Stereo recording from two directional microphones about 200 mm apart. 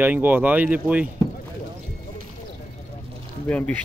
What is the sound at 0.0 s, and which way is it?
Speech, 10° right (ahead or behind).